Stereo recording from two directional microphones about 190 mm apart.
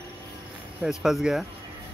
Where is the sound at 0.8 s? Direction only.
Centre (ahead or behind).